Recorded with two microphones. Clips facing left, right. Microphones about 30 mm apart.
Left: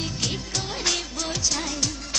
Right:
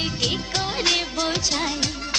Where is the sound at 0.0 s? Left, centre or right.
Right.